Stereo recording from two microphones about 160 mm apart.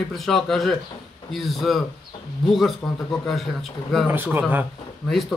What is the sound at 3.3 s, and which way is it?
Speech, centre (ahead or behind).